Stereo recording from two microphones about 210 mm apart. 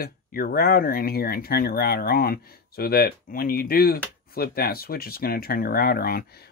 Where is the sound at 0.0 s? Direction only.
45° left (ahead or behind).